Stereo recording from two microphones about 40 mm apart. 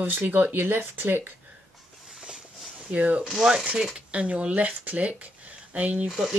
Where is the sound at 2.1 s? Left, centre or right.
Centre.